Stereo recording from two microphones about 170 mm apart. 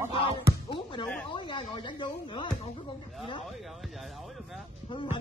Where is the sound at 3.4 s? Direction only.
Centre (ahead or behind).